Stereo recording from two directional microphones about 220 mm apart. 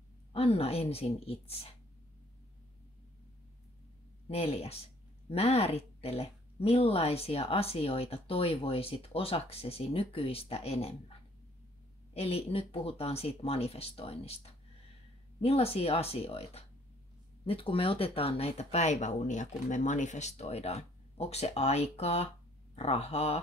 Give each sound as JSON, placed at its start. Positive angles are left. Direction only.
{"t": 0.3, "sound": "speech", "side_deg": 25}
{"t": 4.3, "sound": "speech", "side_deg": 25}